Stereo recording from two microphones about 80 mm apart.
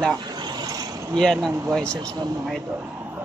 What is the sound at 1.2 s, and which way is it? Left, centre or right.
Speech, centre.